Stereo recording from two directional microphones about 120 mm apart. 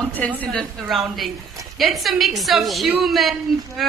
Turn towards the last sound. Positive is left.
turn(degrees=0)  # may be behind; listen again after turning